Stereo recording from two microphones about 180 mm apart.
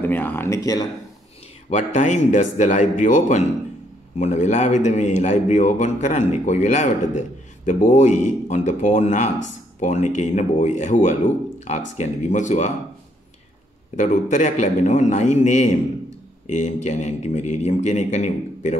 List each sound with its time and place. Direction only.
0.0 s speech: 10° left (ahead or behind)
1.7 s a man's voice: 40° left (ahead or behind)
13.9 s a man's voice: 45° left (ahead or behind)